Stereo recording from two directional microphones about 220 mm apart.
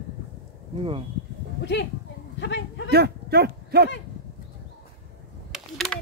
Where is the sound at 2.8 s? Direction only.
45° right (ahead or behind).